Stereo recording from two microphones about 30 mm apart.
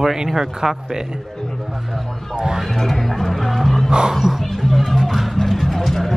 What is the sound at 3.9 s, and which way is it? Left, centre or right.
Speech, right.